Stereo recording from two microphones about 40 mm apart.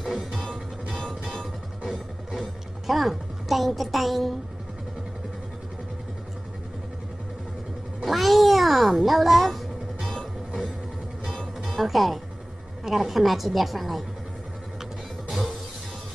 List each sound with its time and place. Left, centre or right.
0.0 s music: centre
0.9 s music: centre
2.4 s music: centre
8.0 s a sound: centre
11.6 s music: centre
12.8 s a woman's voice: centre